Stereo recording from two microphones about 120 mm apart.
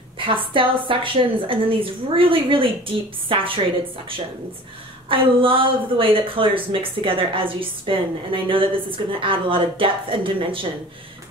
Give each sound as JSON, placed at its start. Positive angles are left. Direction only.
{"t": 0.2, "sound": "a woman's voice", "side_deg": -45}
{"t": 5.1, "sound": "a woman's voice", "side_deg": -45}